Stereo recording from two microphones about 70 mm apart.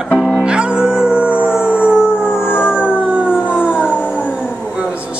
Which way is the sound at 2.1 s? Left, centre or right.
Left.